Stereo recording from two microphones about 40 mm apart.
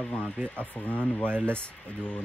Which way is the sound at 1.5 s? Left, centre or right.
Left.